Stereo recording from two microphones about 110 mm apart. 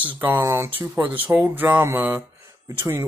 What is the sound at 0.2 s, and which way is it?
Speech, 20° right (ahead or behind).